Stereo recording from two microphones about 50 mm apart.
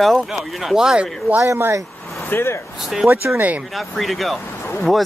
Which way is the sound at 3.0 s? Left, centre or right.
Right.